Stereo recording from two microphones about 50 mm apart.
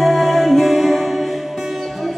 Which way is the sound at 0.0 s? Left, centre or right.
Centre.